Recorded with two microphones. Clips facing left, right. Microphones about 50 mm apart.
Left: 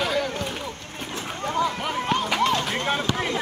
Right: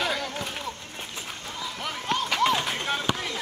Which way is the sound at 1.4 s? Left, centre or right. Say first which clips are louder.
Left 15 dB; left.